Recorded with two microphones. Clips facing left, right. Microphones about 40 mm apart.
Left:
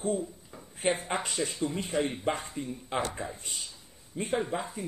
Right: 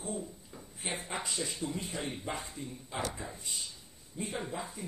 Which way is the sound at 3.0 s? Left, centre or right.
Left.